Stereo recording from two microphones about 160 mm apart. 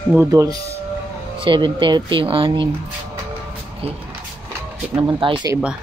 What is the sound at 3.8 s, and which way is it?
Speech, 40° right (ahead or behind).